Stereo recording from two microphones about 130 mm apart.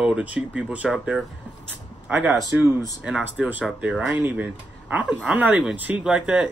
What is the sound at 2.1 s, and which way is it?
Speech, centre (ahead or behind).